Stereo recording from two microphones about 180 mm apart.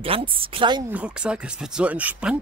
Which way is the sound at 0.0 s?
30° right (ahead or behind).